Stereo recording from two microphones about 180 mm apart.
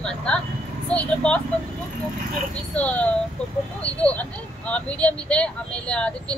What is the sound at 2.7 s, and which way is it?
Speech, 5° left (ahead or behind).